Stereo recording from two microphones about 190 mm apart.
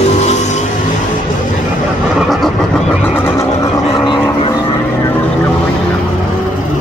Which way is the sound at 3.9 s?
25° left (ahead or behind).